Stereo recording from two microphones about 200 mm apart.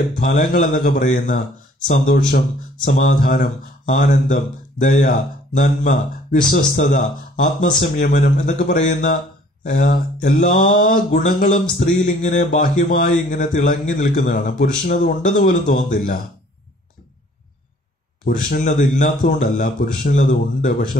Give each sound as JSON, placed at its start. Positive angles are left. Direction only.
{"t": 0.2, "sound": "speech", "side_deg": 45}
{"t": 18.2, "sound": "speech", "side_deg": 45}